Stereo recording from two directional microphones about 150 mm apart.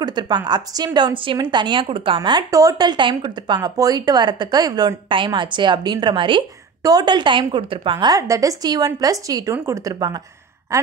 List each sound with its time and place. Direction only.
0.0 s a woman's voice: 30° right (ahead or behind)